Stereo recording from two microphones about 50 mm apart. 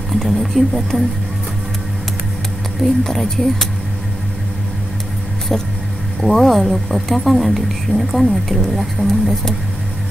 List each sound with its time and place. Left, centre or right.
0.1 s speech: centre
2.8 s speech: centre
5.5 s vehicle: centre
6.2 s speech: centre